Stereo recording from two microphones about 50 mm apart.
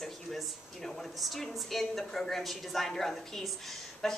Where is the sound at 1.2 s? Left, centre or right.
Centre.